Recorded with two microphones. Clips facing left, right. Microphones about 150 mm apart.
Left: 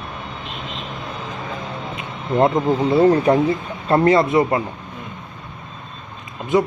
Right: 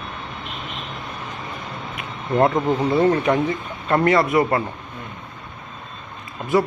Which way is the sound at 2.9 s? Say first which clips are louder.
Left 5 dB; 30° left (ahead or behind).